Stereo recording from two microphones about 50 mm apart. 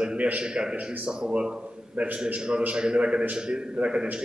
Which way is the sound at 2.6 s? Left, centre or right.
Centre.